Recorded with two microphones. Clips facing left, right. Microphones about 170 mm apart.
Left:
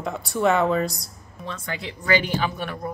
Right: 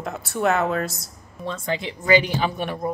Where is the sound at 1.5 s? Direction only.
25° right (ahead or behind).